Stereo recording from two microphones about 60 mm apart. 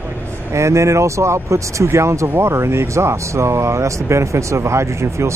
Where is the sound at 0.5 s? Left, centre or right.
Right.